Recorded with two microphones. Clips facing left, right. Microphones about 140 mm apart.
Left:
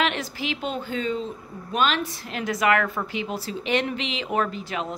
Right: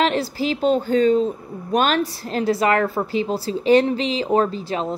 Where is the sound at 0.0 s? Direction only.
35° right (ahead or behind).